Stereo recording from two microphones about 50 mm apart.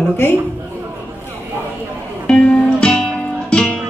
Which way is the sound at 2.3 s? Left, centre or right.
Centre.